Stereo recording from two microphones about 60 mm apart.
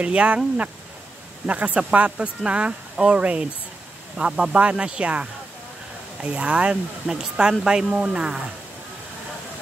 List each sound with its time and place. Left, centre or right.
0.0 s speech: centre
1.4 s speech: right